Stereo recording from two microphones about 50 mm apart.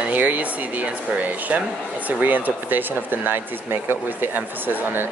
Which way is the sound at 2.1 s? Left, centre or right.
Right.